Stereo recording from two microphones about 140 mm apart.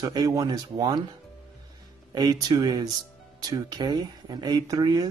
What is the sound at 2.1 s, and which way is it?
A man's voice, 30° right (ahead or behind).